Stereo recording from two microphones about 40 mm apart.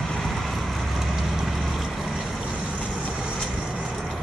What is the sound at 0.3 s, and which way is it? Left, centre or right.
Vehicle, centre.